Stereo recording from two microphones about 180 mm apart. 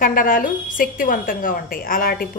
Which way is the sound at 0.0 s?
50° left (ahead or behind).